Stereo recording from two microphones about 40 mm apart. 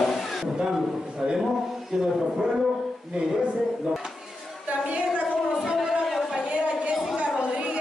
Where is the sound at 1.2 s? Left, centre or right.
Centre.